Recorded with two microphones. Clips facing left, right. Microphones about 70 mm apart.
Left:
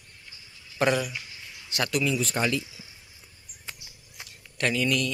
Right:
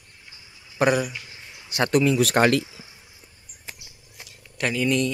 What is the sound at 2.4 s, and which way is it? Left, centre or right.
Speech, right.